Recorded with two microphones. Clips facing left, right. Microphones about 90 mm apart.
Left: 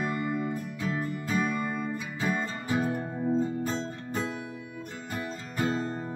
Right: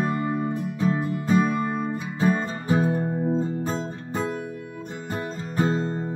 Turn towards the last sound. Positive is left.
turn(degrees=-30)  # may be behind; listen again after turning